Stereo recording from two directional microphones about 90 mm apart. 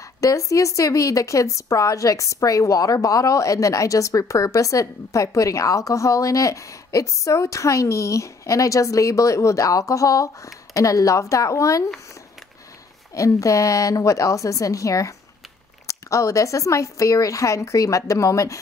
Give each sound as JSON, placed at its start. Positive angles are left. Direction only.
{"t": 0.2, "sound": "a woman's voice", "side_deg": 35}
{"t": 13.1, "sound": "a woman's voice", "side_deg": 35}